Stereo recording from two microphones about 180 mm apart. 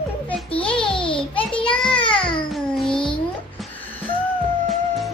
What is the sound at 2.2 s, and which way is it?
Music, 25° left (ahead or behind).